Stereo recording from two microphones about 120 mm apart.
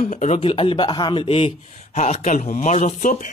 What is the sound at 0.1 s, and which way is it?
Speech, 70° left (ahead or behind).